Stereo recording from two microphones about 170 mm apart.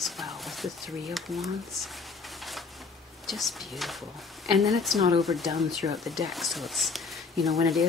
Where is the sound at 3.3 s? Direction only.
Centre (ahead or behind).